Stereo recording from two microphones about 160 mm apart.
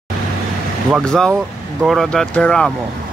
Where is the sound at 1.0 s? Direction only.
5° left (ahead or behind).